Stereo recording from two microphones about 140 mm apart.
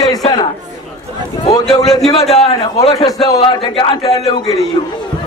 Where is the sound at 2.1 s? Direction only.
50° left (ahead or behind).